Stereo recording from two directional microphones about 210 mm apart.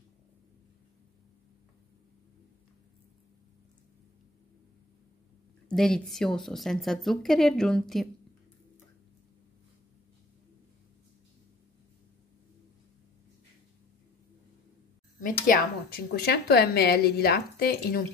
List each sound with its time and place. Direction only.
5.7 s a woman's voice: 5° left (ahead or behind)
15.1 s a woman's voice: 40° left (ahead or behind)